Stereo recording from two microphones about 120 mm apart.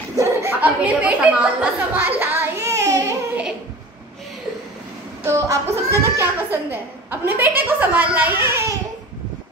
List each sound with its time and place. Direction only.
0.1 s a sound: 25° right (ahead or behind)
0.6 s speech: 10° right (ahead or behind)
5.2 s a woman's voice: 25° right (ahead or behind)